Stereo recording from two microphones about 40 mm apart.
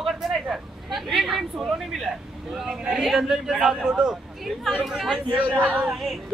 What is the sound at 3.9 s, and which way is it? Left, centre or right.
A woman's voice, right.